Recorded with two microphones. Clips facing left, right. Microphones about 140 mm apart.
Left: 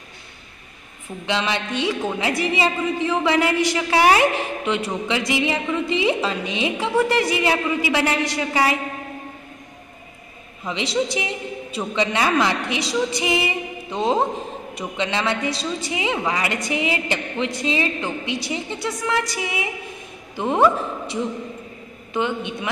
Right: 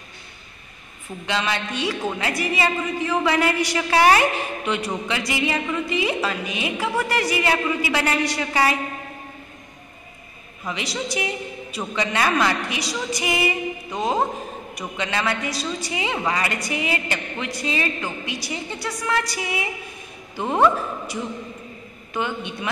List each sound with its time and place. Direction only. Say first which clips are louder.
1.2 s a woman's voice: left 1 dB; 20° left (ahead or behind)
10.6 s a woman's voice: left 5 dB; 25° left (ahead or behind)
22.1 s a woman's voice: left 3 dB; 20° left (ahead or behind)